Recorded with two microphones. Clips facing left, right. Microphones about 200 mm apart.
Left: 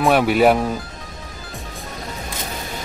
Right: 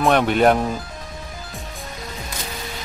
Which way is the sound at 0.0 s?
5° left (ahead or behind).